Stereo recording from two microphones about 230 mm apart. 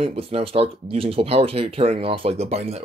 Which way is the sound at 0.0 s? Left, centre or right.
Right.